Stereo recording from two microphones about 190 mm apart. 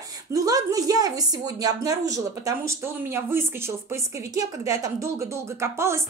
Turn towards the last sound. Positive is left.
turn(degrees=-15)  # may be behind; listen again after turning